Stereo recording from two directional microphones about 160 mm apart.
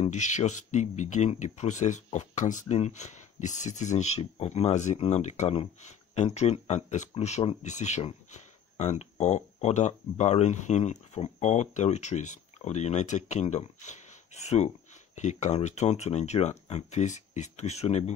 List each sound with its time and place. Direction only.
0.0 s speech: 50° left (ahead or behind)